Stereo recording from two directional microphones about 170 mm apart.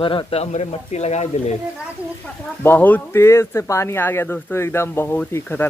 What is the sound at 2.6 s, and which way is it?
Speech, 10° left (ahead or behind).